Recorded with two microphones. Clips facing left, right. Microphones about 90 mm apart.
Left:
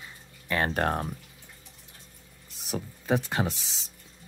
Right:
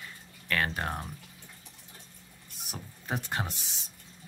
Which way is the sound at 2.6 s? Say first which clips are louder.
Left 9 dB; 90° left.